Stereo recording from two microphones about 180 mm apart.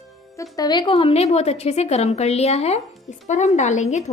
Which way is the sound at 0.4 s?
20° left (ahead or behind).